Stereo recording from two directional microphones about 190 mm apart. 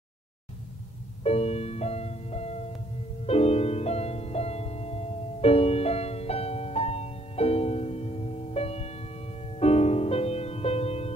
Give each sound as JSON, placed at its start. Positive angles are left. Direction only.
{"t": 1.2, "sound": "music", "side_deg": 35}